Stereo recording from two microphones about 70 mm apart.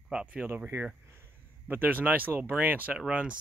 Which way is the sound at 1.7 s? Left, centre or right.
Right.